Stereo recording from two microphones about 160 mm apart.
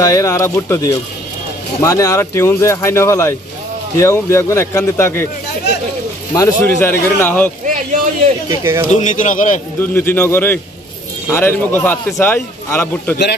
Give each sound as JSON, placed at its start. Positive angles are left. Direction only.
{"t": 0.0, "sound": "a man's voice", "side_deg": 20}
{"t": 6.3, "sound": "a man's voice", "side_deg": 15}
{"t": 8.5, "sound": "speech", "side_deg": -20}
{"t": 8.9, "sound": "speech", "side_deg": 50}
{"t": 9.8, "sound": "a man's voice", "side_deg": 15}